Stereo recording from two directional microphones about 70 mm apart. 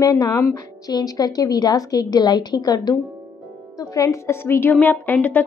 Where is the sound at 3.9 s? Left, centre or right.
Left.